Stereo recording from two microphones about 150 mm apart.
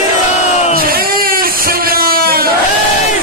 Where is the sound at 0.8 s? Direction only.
85° right.